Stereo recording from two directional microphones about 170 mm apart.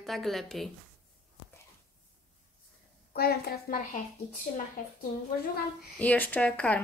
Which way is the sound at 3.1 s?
65° left (ahead or behind).